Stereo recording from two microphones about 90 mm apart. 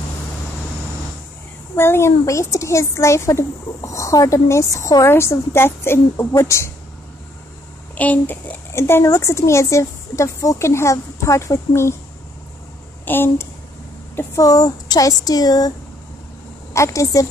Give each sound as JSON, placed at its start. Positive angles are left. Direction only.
{"t": 1.8, "sound": "speech", "side_deg": 30}
{"t": 7.9, "sound": "speech", "side_deg": 15}
{"t": 8.7, "sound": "speech", "side_deg": 30}
{"t": 13.0, "sound": "speech", "side_deg": 25}
{"t": 14.4, "sound": "speech", "side_deg": 45}
{"t": 16.7, "sound": "speech", "side_deg": 35}